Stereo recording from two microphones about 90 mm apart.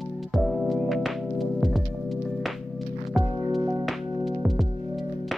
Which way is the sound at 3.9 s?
Centre (ahead or behind).